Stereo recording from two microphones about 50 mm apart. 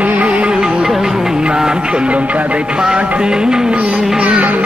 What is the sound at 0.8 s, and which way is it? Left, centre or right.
Music, centre.